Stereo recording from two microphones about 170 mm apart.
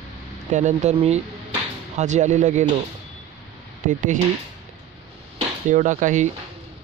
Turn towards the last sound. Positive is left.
turn(degrees=-45)  # may be behind; listen again after turning